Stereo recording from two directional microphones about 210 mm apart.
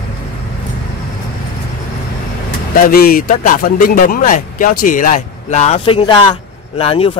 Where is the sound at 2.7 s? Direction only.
45° left (ahead or behind).